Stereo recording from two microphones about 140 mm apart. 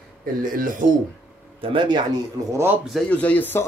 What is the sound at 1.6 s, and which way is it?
Speech, 35° right (ahead or behind).